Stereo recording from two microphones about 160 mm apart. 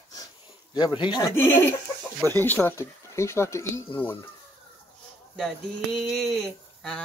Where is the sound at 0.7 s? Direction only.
30° left (ahead or behind).